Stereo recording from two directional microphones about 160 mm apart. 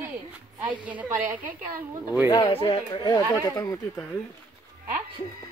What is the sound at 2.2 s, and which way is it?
Speech, 25° left (ahead or behind).